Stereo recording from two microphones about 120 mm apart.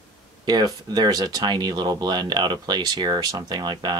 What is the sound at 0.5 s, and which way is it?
Speech, 35° right (ahead or behind).